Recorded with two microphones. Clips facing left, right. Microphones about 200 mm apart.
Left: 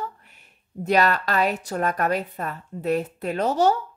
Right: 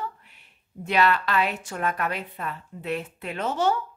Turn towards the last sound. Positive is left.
turn(degrees=40)  # may be behind; listen again after turning